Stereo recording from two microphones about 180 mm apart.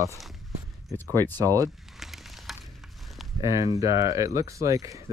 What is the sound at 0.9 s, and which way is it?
Speech, 10° left (ahead or behind).